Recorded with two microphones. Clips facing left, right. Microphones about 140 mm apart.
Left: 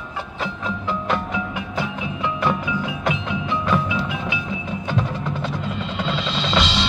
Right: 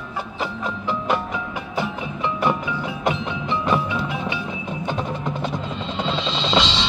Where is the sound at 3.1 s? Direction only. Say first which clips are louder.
Even; 5° left (ahead or behind).